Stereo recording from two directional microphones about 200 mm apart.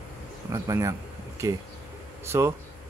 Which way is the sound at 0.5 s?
15° right (ahead or behind).